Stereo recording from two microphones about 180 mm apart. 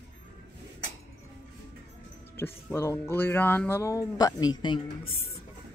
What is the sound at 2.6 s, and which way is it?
Speech, 15° left (ahead or behind).